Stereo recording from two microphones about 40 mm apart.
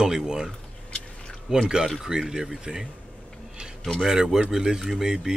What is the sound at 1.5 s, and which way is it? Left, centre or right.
Speech, centre.